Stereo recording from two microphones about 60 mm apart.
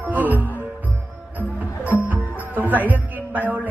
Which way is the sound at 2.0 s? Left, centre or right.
Right.